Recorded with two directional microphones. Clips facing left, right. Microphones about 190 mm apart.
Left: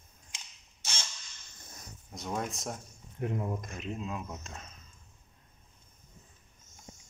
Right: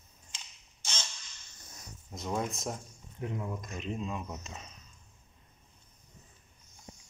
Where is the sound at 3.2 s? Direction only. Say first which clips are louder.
Left 3 dB; 60° left (ahead or behind).